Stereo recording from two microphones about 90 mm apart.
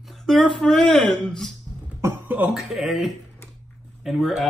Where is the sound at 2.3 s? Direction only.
20° right (ahead or behind).